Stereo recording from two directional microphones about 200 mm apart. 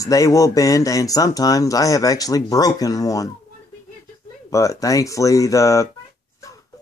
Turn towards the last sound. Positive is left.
turn(degrees=15)  # may be behind; listen again after turning